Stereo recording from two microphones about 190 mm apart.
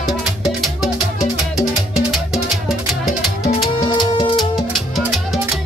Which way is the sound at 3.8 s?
20° left (ahead or behind).